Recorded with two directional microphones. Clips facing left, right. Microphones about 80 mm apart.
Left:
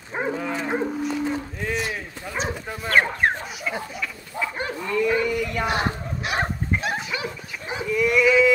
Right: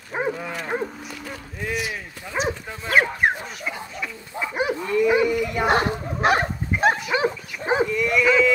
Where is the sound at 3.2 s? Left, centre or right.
Centre.